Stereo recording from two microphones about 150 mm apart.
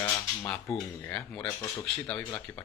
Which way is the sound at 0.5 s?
5° left (ahead or behind).